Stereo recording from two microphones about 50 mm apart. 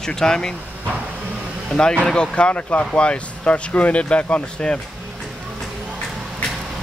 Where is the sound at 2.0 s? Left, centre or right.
Centre.